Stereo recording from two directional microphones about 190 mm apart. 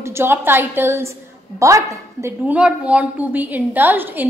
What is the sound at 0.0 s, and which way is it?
A woman's voice, 15° right (ahead or behind).